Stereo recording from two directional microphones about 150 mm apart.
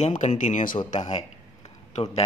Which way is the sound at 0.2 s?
55° left (ahead or behind).